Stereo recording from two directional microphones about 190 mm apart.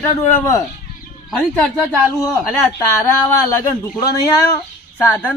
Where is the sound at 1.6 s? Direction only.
10° left (ahead or behind).